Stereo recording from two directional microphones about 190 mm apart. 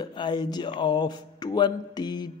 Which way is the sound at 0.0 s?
25° left (ahead or behind).